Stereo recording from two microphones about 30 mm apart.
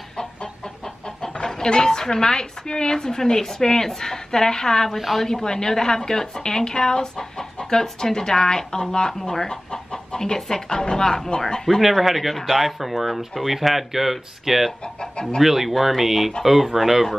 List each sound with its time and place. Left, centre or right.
1.2 s speech: left
4.9 s speech: centre
5.3 s speech: centre
11.8 s speech: centre